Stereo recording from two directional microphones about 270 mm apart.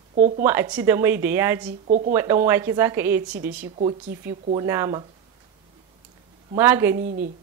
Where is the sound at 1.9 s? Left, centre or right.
Right.